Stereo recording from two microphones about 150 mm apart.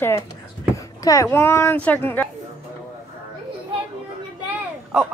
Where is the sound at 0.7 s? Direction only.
20° left (ahead or behind).